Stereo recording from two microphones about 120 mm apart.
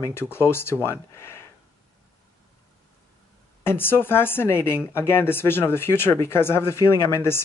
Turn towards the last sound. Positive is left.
turn(degrees=20)  # may be behind; listen again after turning